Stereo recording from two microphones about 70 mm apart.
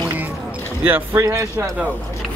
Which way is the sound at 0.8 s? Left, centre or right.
Right.